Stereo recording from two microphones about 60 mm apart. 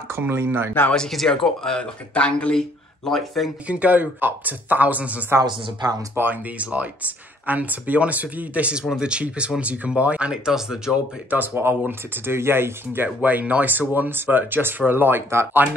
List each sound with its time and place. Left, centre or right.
0.3 s speech: right
0.9 s speech: centre
3.1 s speech: centre
3.6 s speech: right
6.2 s speech: right
6.6 s speech: right
10.3 s speech: centre
11.2 s speech: right